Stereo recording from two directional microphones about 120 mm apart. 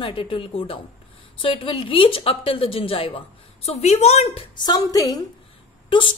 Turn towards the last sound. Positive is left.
turn(degrees=45)  # may be behind; listen again after turning